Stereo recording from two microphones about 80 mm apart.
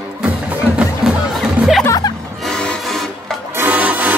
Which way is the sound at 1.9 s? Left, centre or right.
Left.